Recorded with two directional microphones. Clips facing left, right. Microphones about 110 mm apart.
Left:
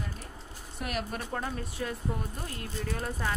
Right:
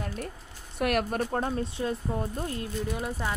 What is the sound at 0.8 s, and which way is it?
Speech, 60° right (ahead or behind).